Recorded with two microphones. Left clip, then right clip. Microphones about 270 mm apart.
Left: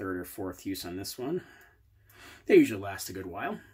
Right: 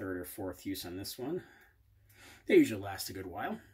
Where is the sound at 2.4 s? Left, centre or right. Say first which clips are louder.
Left 4 dB; centre.